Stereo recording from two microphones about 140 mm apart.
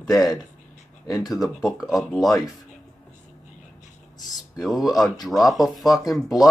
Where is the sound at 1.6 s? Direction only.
Centre (ahead or behind).